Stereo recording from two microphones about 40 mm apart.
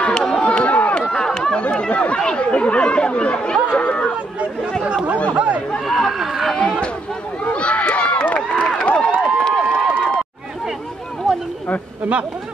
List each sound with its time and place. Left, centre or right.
0.1 s a sound: centre
0.4 s chatter: left
1.1 s chatter: centre
1.6 s chatter: left
2.3 s speech: left
3.7 s chatter: left
4.8 s chatter: right
5.9 s chatter: centre
7.5 s crowd: left
8.4 s run: left
8.9 s a sound: left